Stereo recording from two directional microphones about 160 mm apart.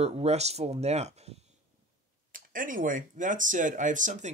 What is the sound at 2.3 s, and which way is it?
Speech, 60° right (ahead or behind).